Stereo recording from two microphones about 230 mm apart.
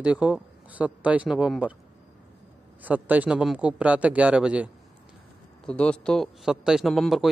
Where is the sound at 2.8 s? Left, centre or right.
Centre.